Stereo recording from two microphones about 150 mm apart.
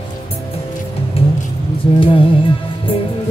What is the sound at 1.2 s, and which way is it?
Vehicle, 40° left (ahead or behind).